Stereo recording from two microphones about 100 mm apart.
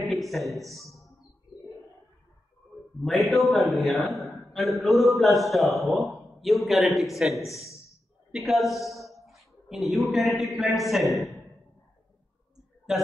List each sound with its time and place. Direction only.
0.1 s a sound: centre (ahead or behind)
3.0 s a man's voice: centre (ahead or behind)
7.4 s a man's voice: 30° left (ahead or behind)
8.3 s speech: 5° right (ahead or behind)
12.9 s a man's voice: 5° right (ahead or behind)